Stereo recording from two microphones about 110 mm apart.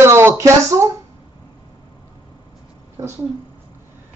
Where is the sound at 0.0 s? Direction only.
25° right (ahead or behind).